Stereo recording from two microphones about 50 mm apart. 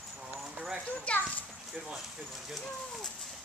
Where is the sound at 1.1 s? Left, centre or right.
Left.